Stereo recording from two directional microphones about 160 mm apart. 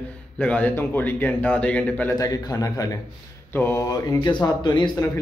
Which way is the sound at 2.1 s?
25° left (ahead or behind).